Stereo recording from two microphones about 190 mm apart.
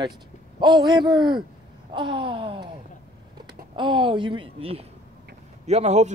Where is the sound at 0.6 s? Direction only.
25° right (ahead or behind).